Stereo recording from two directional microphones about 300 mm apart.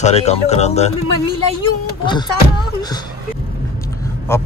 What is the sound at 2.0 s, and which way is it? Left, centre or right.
Speech, centre.